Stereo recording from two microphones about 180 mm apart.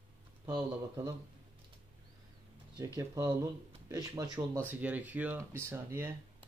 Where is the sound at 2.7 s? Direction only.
20° right (ahead or behind).